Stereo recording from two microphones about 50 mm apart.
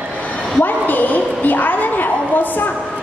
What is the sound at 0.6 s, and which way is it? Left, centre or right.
A woman's voice, left.